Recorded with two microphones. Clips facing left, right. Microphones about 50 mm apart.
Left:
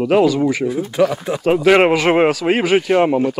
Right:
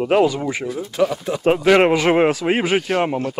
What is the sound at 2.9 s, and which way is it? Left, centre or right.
Speech, centre.